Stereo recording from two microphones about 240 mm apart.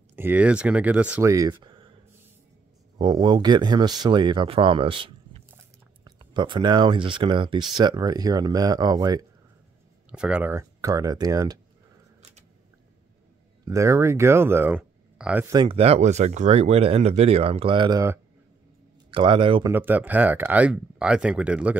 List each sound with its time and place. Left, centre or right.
0.1 s speech: centre
3.0 s speech: centre
10.1 s speech: centre
13.7 s speech: centre
15.5 s speech: right
19.7 s speech: centre